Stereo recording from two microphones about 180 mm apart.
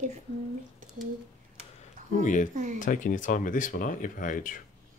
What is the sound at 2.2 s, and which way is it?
Speech, 45° left (ahead or behind).